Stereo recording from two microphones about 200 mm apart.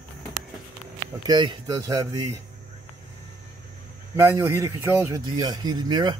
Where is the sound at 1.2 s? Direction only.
20° right (ahead or behind).